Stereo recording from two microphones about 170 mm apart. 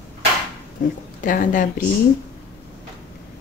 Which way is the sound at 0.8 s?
50° left (ahead or behind).